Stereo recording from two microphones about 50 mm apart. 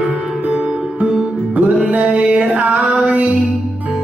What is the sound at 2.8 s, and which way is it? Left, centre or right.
Music, centre.